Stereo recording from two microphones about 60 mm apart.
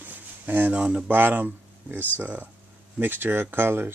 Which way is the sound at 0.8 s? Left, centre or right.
Centre.